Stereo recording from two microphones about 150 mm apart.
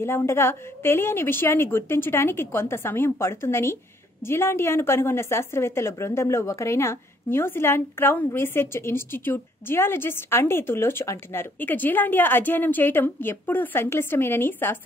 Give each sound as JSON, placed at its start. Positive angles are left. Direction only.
{"t": 0.0, "sound": "a woman's voice", "side_deg": 15}